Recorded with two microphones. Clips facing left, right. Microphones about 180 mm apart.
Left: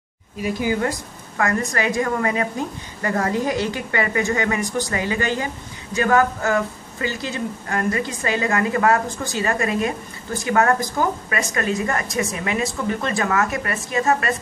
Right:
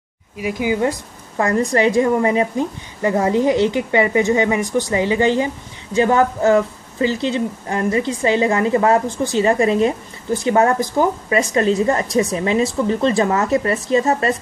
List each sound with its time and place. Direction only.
0.4 s speech: 15° right (ahead or behind)
1.4 s speech: 30° right (ahead or behind)